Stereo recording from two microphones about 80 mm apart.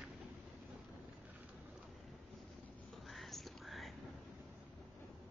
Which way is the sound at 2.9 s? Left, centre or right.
Centre.